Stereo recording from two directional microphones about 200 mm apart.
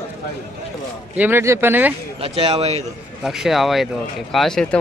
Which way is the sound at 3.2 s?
Centre (ahead or behind).